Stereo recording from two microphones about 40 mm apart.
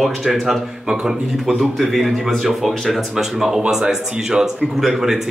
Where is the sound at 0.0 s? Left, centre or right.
Centre.